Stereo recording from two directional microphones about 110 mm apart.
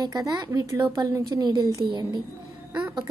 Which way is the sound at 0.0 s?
40° right (ahead or behind).